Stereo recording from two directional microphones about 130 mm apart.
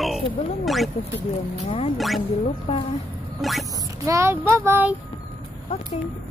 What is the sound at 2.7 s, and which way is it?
Speech, 45° left (ahead or behind).